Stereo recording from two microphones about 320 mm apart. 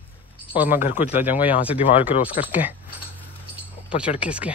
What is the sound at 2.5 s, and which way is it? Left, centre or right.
Speech, centre.